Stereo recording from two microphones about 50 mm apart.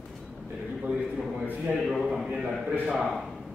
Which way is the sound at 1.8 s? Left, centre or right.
Centre.